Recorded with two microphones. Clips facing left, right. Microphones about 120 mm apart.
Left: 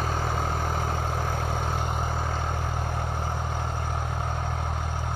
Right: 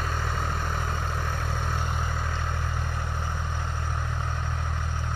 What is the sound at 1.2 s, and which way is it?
Vehicle, 45° left (ahead or behind).